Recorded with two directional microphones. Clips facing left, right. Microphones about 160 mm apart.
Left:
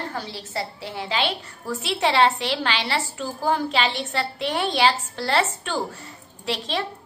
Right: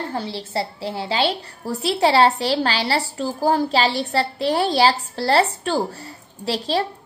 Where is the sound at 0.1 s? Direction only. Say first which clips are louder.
Right 5 dB; 30° right (ahead or behind).